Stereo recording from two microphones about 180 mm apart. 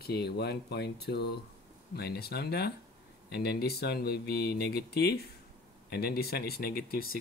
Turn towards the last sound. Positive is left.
turn(degrees=55)  # may be behind; listen again after turning